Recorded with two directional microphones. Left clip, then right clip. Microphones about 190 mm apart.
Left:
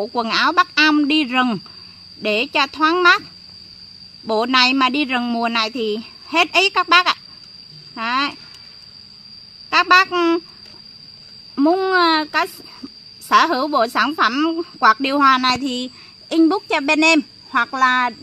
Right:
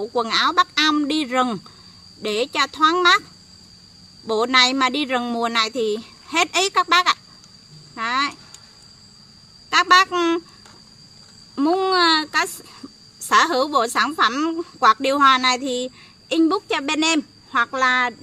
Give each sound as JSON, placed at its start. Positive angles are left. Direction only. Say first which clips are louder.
{"t": 0.0, "sound": "a woman's voice", "louder": "left 2 dB", "side_deg": 45}
{"t": 4.3, "sound": "a woman's voice", "louder": "left 1 dB", "side_deg": 40}
{"t": 5.7, "sound": "speech", "louder": "even", "side_deg": 15}
{"t": 6.3, "sound": "speech", "louder": "left 3 dB", "side_deg": 40}
{"t": 9.7, "sound": "a woman's voice", "louder": "left 1 dB", "side_deg": 40}
{"t": 11.5, "sound": "a woman's voice", "louder": "left 3 dB", "side_deg": 35}